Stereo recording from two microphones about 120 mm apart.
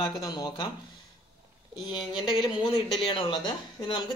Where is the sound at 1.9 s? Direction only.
40° left (ahead or behind).